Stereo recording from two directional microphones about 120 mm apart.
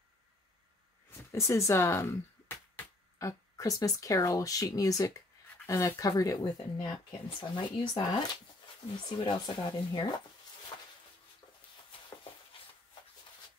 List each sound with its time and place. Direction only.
1.3 s speech: 25° left (ahead or behind); by 10.0 s 40° left (ahead or behind)